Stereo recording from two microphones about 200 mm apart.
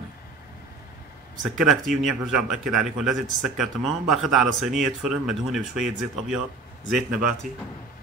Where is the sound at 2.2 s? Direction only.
5° right (ahead or behind).